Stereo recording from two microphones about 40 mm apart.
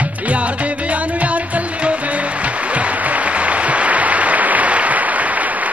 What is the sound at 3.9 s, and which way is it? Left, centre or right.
Applause, right.